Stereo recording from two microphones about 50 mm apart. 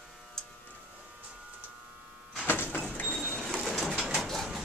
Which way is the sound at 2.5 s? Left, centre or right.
Left.